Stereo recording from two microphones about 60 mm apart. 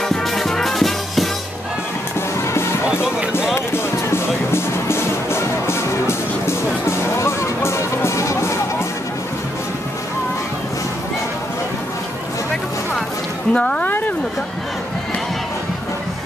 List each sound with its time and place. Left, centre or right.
0.1 s music: centre
2.9 s music: centre
3.5 s music: left
13.5 s speech: centre
13.8 s a sound: left